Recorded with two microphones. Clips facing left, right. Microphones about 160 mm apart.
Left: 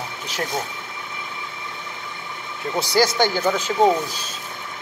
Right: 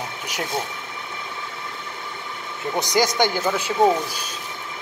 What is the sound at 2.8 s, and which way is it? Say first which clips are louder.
Speech: left 1 dB; 20° right (ahead or behind).